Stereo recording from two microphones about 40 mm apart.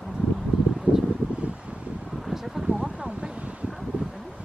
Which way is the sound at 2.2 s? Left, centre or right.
Centre.